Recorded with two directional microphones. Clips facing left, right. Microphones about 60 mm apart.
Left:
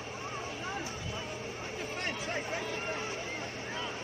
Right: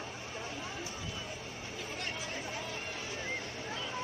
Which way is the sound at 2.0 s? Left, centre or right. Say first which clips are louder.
Left 5 dB; left.